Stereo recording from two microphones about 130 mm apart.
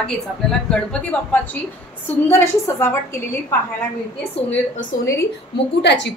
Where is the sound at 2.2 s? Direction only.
20° left (ahead or behind).